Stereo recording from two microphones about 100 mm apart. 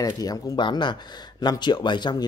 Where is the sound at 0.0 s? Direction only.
40° left (ahead or behind).